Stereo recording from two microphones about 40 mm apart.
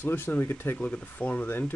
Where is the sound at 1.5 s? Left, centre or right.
Left.